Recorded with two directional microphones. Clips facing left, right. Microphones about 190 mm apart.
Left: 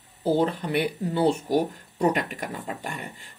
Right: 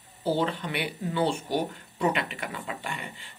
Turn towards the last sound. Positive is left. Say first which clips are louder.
# left 2 dB
turn(degrees=45)  # may be behind; listen again after turning